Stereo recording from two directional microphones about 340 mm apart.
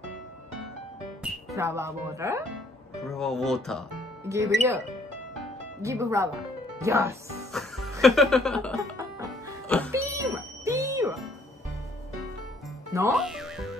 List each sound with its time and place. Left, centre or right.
1.2 s speech: centre
8.9 s music: centre
12.9 s music: centre